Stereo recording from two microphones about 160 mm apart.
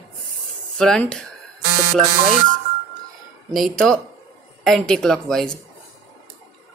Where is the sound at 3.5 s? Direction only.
Centre (ahead or behind).